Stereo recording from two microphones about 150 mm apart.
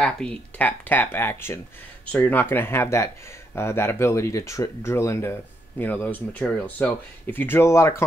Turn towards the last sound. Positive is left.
turn(degrees=20)  # may be behind; listen again after turning